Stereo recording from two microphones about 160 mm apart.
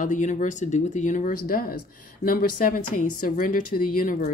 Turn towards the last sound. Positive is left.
turn(degrees=65)  # may be behind; listen again after turning